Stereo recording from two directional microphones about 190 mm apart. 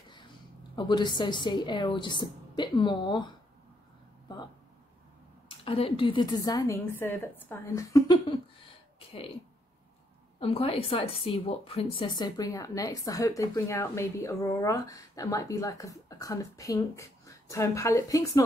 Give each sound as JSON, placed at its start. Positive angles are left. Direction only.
{"t": 0.7, "sound": "a woman's voice", "side_deg": 25}
{"t": 5.5, "sound": "a woman's voice", "side_deg": 30}
{"t": 10.4, "sound": "speech", "side_deg": 30}